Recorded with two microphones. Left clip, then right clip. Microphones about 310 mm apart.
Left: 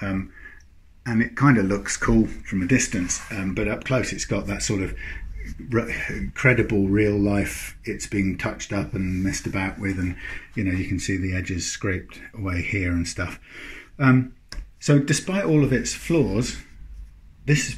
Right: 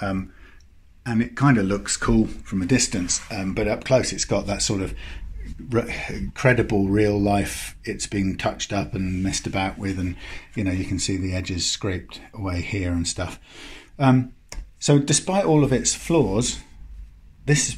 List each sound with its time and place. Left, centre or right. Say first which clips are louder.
1.0 s speech: left 1 dB; centre
2.7 s speech: right 1 dB; centre